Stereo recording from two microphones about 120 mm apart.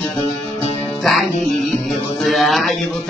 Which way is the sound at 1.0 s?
Centre (ahead or behind).